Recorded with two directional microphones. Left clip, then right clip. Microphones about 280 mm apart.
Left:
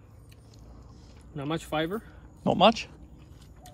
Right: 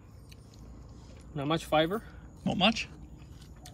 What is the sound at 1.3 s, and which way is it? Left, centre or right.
Speech, centre.